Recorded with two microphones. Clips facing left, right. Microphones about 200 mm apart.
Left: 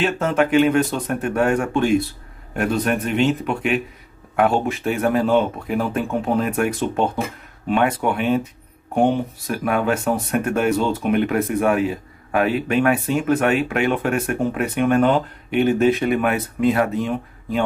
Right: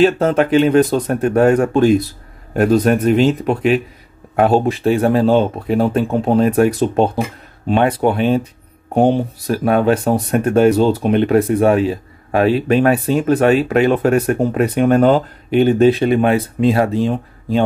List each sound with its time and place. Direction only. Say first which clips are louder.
0.0 s speech: right 6 dB; 35° right (ahead or behind)